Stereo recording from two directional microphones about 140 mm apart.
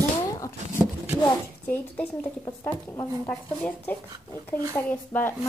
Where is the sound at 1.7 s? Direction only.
10° left (ahead or behind).